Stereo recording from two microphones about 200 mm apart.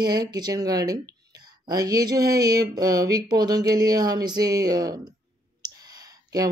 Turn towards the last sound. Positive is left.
turn(degrees=-20)  # may be behind; listen again after turning